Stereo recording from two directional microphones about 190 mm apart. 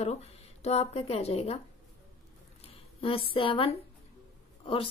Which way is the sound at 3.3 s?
30° left (ahead or behind).